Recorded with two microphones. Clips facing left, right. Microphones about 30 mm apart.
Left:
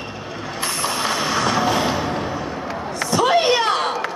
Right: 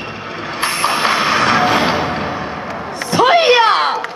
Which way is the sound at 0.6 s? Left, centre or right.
Right.